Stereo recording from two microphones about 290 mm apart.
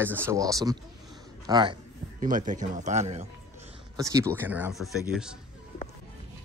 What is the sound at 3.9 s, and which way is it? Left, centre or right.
A man's voice, centre.